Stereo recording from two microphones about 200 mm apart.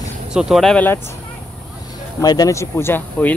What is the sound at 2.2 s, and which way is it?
Speech, 20° left (ahead or behind).